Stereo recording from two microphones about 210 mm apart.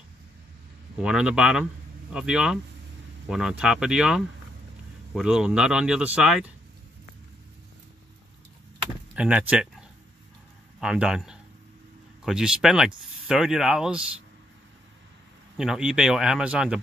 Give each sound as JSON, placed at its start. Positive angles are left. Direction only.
{"t": 1.0, "sound": "speech", "side_deg": -5}
{"t": 9.1, "sound": "speech", "side_deg": -5}
{"t": 15.5, "sound": "speech", "side_deg": 0}